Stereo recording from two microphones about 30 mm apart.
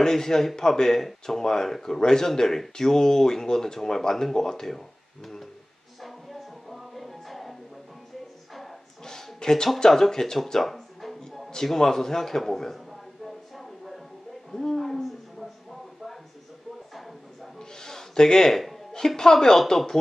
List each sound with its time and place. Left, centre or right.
0.0 s speech: centre
5.9 s music: centre
9.0 s a sound: left
9.8 s speech: centre
10.6 s music: centre
11.6 s speech: centre
12.7 s a sound: centre
17.6 s a sound: centre
18.9 s speech: centre